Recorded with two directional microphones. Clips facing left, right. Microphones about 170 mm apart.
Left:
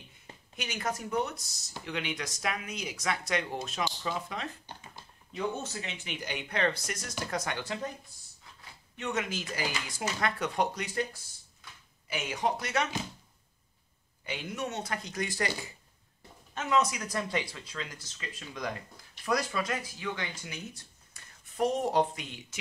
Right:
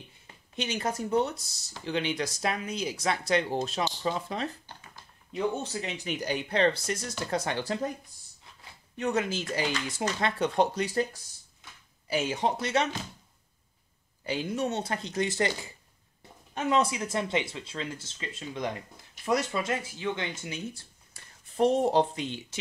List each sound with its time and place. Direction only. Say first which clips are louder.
0.6 s speech: right 4 dB; 30° right (ahead or behind)
4.7 s typing: left 2 dB; 15° left (ahead or behind)
5.3 s speech: right 4 dB; 30° right (ahead or behind)
8.9 s speech: right 5 dB; 35° right (ahead or behind)
12.1 s speech: right 4 dB; 30° right (ahead or behind)
14.2 s speech: right 6 dB; 35° right (ahead or behind)
16.5 s speech: right 2 dB; 30° right (ahead or behind)